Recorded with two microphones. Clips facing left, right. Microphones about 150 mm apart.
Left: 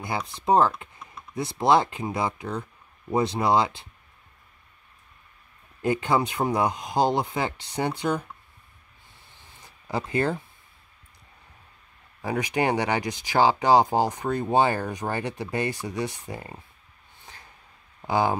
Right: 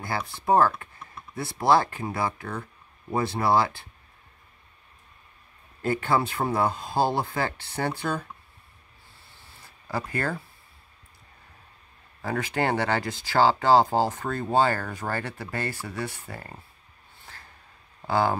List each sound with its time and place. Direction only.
0.0 s speech: 20° left (ahead or behind)
5.8 s speech: 15° left (ahead or behind)
9.3 s a sound: 20° left (ahead or behind)
12.2 s speech: 15° left (ahead or behind)
17.3 s a sound: 15° left (ahead or behind)
18.0 s speech: 15° left (ahead or behind)